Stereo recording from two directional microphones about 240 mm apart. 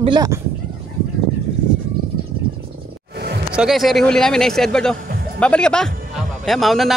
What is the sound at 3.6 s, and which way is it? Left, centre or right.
Speech, centre.